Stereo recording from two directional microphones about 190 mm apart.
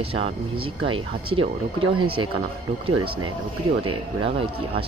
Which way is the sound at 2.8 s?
30° right (ahead or behind).